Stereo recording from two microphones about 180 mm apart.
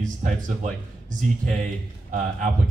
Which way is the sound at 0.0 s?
50° right (ahead or behind).